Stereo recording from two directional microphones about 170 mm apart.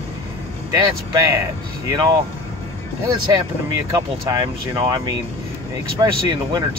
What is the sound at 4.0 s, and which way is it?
Speech, 20° right (ahead or behind).